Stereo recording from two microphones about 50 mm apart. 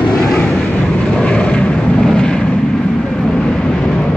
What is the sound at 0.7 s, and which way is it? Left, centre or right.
Vehicle, centre.